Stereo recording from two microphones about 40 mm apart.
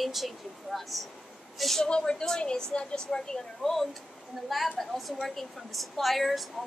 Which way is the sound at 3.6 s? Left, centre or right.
Centre.